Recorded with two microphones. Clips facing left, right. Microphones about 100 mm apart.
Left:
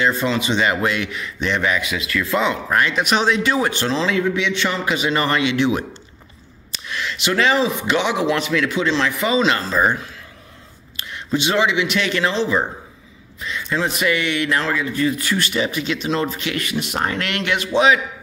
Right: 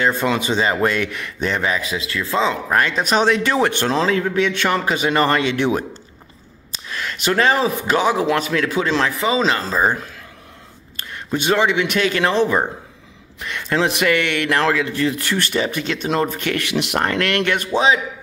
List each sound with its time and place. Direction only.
0.0 s a man's voice: 50° right (ahead or behind)
0.6 s a man's voice: 30° right (ahead or behind)
6.9 s speech: 45° right (ahead or behind)
9.2 s speech: 30° right (ahead or behind)
11.0 s a sound: 50° right (ahead or behind)
11.3 s a man's voice: 45° right (ahead or behind)
13.4 s a man's voice: 65° right (ahead or behind)
17.7 s speech: 30° right (ahead or behind)